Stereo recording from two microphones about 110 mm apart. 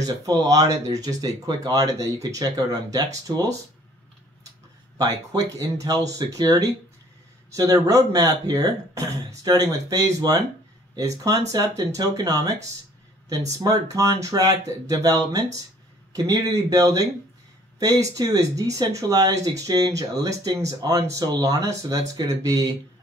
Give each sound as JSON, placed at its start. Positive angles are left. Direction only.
{"t": 0.0, "sound": "speech", "side_deg": -35}
{"t": 4.9, "sound": "speech", "side_deg": -35}
{"t": 13.6, "sound": "speech", "side_deg": -30}